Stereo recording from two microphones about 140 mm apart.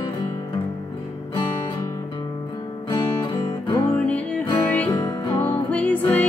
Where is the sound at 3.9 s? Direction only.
10° left (ahead or behind).